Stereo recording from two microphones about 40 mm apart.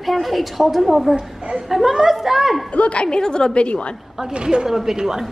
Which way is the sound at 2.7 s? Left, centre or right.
Left.